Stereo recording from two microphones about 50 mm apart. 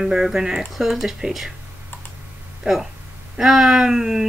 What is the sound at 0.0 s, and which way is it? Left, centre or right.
A woman's voice, centre.